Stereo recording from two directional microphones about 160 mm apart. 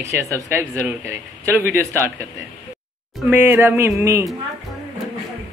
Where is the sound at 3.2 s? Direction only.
10° right (ahead or behind).